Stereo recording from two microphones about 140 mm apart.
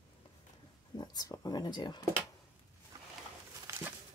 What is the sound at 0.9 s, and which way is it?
Speech, 25° left (ahead or behind).